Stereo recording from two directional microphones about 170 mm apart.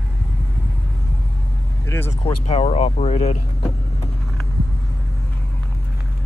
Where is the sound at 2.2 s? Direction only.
40° left (ahead or behind).